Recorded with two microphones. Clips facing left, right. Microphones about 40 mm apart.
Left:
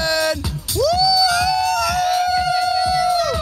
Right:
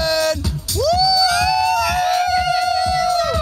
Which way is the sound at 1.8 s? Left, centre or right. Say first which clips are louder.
Right 1 dB; centre.